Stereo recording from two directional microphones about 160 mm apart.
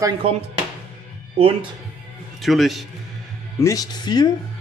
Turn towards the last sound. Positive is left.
turn(degrees=25)  # may be behind; listen again after turning